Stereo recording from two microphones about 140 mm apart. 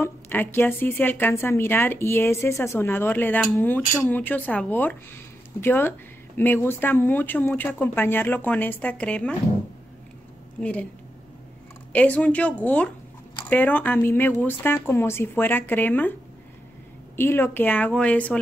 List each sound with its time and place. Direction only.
0.0 s speech: 15° left (ahead or behind)
10.6 s speech: 10° left (ahead or behind)
11.9 s speech: 10° left (ahead or behind)
17.2 s speech: 15° left (ahead or behind)